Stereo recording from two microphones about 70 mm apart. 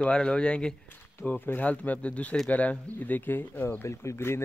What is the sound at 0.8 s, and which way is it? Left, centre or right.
A man's voice, left.